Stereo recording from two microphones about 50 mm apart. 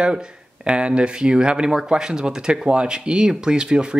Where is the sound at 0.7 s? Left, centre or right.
Right.